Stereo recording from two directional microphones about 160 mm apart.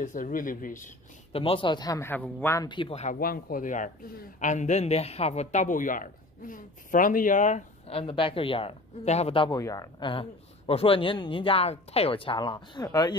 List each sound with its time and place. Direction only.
0.0 s speech: 55° left (ahead or behind)
1.3 s a man's voice: 35° left (ahead or behind); by 2.7 s 15° left (ahead or behind)
2.7 s speech: 30° left (ahead or behind)
3.0 s a man's voice: 60° left (ahead or behind)
7.9 s speech: 35° left (ahead or behind)
9.6 s a man's voice: 20° left (ahead or behind)
10.7 s speech: 35° left (ahead or behind)